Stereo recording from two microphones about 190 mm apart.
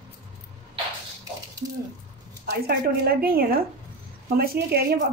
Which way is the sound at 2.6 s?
55° right (ahead or behind).